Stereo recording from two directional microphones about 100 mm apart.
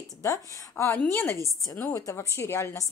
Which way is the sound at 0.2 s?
25° left (ahead or behind).